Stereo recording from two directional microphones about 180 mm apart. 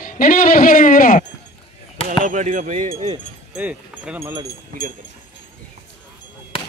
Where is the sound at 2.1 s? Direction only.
45° right (ahead or behind).